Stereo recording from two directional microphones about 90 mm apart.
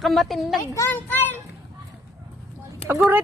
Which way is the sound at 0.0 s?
Centre (ahead or behind).